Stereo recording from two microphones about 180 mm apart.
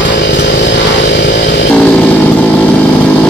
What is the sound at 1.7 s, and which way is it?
Motorcycle, 5° left (ahead or behind).